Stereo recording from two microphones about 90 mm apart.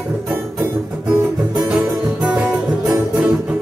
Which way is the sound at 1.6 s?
10° right (ahead or behind).